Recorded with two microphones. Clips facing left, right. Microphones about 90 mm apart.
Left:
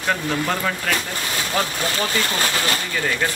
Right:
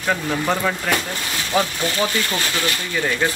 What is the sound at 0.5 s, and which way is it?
Speech, 5° right (ahead or behind).